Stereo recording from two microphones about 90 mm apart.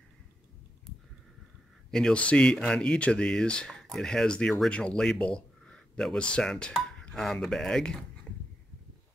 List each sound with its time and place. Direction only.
1.9 s speech: 5° left (ahead or behind)